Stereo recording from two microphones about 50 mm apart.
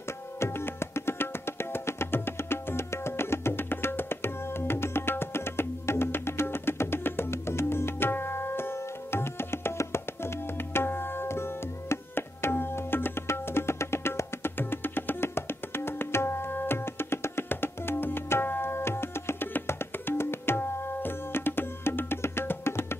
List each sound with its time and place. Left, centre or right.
0.4 s music: left
19.6 s tabla: left